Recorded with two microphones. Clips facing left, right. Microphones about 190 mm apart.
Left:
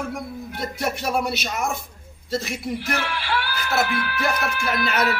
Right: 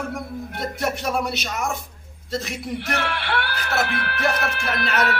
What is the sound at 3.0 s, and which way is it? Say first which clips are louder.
Speech: right 1 dB; 60° right (ahead or behind).